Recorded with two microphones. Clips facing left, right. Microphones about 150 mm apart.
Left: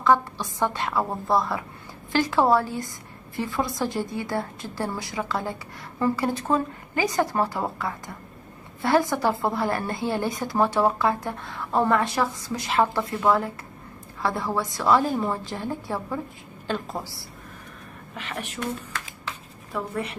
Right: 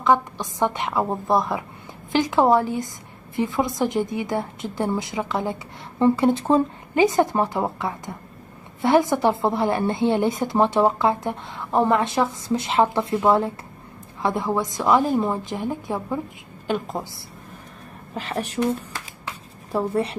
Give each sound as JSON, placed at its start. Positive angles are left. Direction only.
{"t": 0.0, "sound": "a woman's voice", "side_deg": -20}
{"t": 18.1, "sound": "a woman's voice", "side_deg": -35}
{"t": 19.2, "sound": "a sound", "side_deg": -35}